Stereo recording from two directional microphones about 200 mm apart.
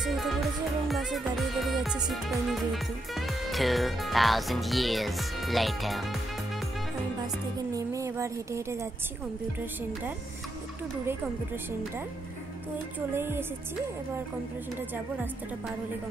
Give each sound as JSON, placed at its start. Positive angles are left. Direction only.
{"t": 0.0, "sound": "music", "side_deg": 0}
{"t": 2.0, "sound": "speech", "side_deg": 0}
{"t": 7.2, "sound": "speech", "side_deg": -20}
{"t": 13.1, "sound": "music", "side_deg": -10}